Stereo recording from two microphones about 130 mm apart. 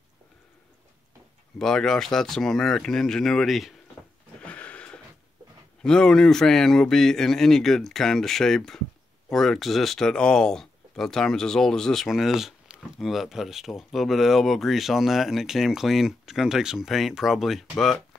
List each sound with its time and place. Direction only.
1.6 s speech: 5° left (ahead or behind)
4.4 s a sound: 10° left (ahead or behind)
5.8 s speech: 5° left (ahead or behind)